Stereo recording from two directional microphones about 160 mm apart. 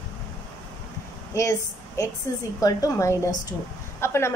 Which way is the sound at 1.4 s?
20° left (ahead or behind).